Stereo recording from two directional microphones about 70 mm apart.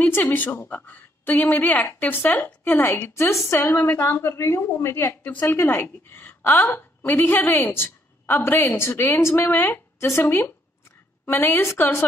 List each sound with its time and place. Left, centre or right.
0.1 s a woman's voice: left
10.2 s a woman's voice: left